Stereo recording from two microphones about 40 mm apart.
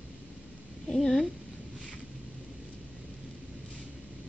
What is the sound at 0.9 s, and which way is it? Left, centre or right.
Speech, centre.